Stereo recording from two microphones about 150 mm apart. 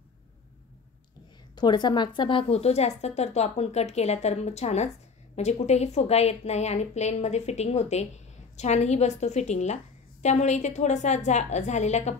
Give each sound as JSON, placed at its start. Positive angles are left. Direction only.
{"t": 1.5, "sound": "a woman's voice", "side_deg": 30}